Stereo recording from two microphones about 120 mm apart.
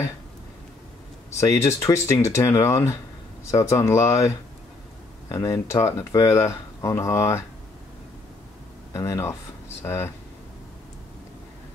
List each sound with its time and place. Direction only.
1.4 s speech: 25° left (ahead or behind)
5.3 s speech: 25° left (ahead or behind)
8.9 s speech: 25° left (ahead or behind)